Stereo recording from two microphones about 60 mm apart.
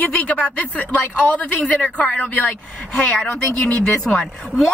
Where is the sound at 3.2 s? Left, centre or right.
Centre.